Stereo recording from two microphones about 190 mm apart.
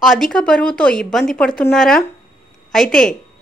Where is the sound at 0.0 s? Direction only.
Centre (ahead or behind).